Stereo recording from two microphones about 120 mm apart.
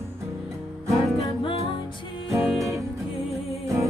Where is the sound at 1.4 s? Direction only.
50° left (ahead or behind).